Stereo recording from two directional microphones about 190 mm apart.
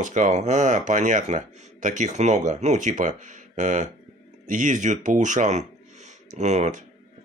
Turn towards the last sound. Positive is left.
turn(degrees=-35)  # may be behind; listen again after turning